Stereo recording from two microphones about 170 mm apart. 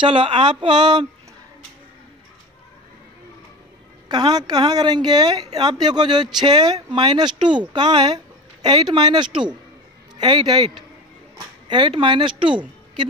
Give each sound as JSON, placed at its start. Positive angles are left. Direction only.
{"t": 0.0, "sound": "a woman's voice", "side_deg": -30}
{"t": 4.1, "sound": "a woman's voice", "side_deg": -25}